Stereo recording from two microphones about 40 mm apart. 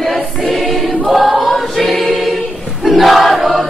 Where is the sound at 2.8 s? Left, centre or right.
Centre.